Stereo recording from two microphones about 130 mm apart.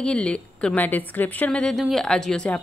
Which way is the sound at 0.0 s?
10° left (ahead or behind).